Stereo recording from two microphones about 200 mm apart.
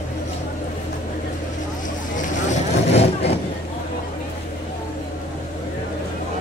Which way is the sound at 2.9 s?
30° left (ahead or behind).